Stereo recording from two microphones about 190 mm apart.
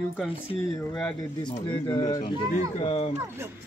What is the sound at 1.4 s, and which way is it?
Speech, 25° left (ahead or behind).